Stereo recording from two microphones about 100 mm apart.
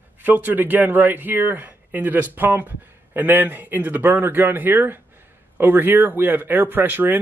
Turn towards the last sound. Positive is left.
turn(degrees=-20)  # may be behind; listen again after turning